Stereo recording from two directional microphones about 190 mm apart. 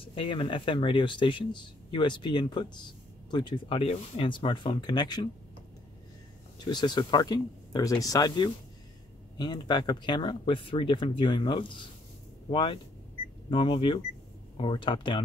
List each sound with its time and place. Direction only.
0.0 s speech: 25° left (ahead or behind)
6.6 s speech: 20° left (ahead or behind)